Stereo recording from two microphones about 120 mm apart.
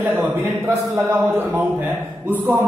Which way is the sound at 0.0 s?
15° right (ahead or behind).